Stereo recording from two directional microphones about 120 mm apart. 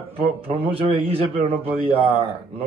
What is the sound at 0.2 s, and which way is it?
Speech, 50° right (ahead or behind).